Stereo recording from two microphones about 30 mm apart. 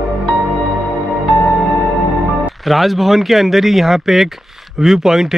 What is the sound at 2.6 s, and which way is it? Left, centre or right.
Speech, centre.